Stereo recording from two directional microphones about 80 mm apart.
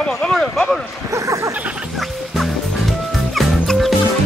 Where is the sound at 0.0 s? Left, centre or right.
Centre.